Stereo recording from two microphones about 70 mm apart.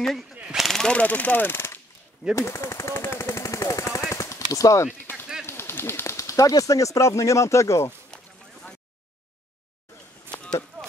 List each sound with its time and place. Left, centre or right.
0.3 s machine gun: centre
0.6 s speech: centre
0.9 s speech: left
2.3 s machine gun: left
4.1 s gunshot: left
5.1 s a sound: left
5.5 s speech: left
10.3 s a sound: centre